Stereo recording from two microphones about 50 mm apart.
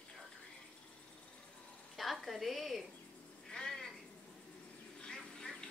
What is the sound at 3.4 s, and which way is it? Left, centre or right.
Frog, centre.